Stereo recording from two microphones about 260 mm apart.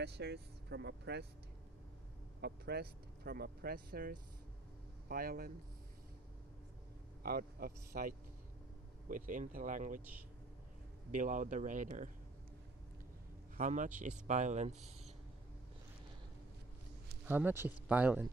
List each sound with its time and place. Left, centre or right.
0.0 s speech: right
2.4 s speech: right
7.2 s speech: right
11.1 s speech: right
13.6 s speech: right
17.3 s speech: centre